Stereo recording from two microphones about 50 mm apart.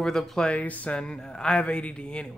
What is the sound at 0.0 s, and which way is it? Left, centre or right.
Speech, centre.